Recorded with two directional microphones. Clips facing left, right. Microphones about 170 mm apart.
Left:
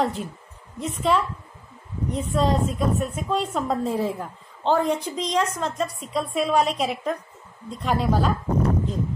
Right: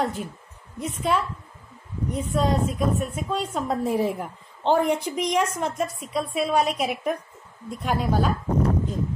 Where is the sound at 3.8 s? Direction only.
15° right (ahead or behind).